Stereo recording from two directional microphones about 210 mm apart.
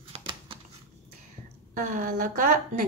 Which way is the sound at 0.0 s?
25° right (ahead or behind).